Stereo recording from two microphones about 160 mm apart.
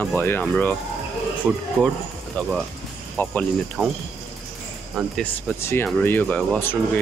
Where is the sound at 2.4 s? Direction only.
10° left (ahead or behind).